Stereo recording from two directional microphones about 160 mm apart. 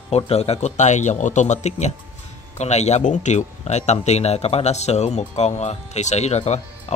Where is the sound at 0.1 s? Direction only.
40° left (ahead or behind).